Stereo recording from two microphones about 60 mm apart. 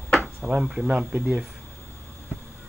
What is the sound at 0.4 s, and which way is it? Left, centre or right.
Speech, centre.